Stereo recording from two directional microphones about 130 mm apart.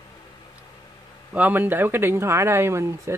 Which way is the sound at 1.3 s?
15° right (ahead or behind).